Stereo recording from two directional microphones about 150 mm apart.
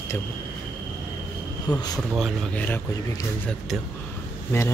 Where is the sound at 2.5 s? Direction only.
15° left (ahead or behind).